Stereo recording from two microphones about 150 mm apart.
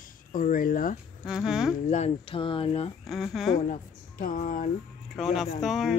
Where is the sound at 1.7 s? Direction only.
50° left (ahead or behind).